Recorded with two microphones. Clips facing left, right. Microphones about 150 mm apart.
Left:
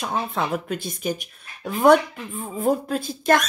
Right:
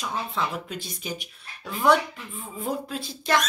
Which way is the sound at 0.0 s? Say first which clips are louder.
Left 4 dB; 50° left (ahead or behind).